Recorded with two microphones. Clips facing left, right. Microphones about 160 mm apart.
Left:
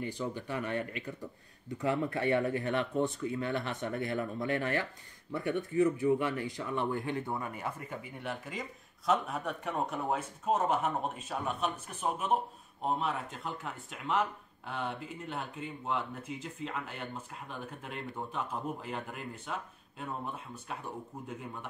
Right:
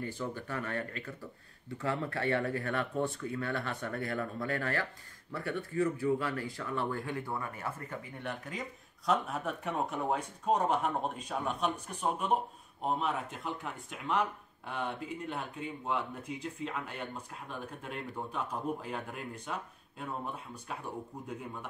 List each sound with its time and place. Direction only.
0.0 s speech: 15° left (ahead or behind)
8.2 s speech: centre (ahead or behind)